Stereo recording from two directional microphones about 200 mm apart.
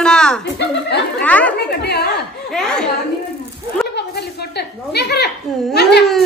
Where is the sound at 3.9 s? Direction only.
55° left (ahead or behind).